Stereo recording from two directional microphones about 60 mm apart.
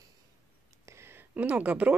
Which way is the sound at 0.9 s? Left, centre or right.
Right.